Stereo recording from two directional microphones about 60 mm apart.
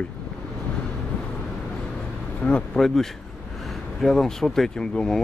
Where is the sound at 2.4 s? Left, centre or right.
Left.